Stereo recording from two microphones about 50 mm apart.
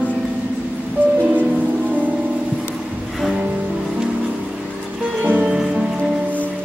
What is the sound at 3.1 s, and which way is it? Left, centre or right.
Music, centre.